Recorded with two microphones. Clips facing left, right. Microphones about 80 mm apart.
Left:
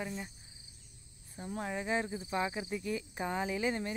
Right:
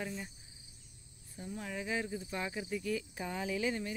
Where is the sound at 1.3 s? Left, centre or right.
Left.